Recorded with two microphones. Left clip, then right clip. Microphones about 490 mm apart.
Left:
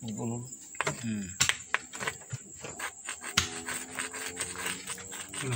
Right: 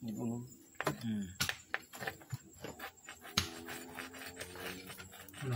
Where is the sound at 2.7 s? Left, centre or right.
Right.